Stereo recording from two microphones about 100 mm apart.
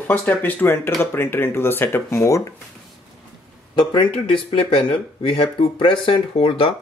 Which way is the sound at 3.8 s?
55° left (ahead or behind).